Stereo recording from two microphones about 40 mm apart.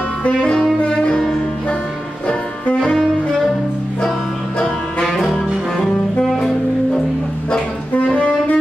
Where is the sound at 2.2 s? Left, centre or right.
Left.